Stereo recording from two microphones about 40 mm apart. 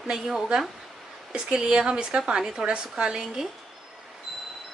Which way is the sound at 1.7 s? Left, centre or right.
Right.